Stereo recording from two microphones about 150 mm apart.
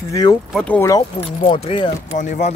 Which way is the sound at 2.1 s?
55° left (ahead or behind).